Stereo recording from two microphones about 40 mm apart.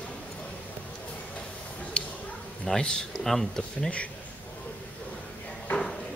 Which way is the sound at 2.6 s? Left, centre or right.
Centre.